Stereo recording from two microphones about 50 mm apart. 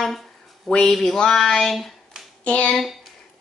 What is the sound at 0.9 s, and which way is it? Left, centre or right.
Mantra, centre.